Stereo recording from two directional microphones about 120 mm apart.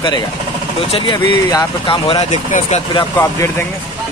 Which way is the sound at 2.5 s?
65° left (ahead or behind).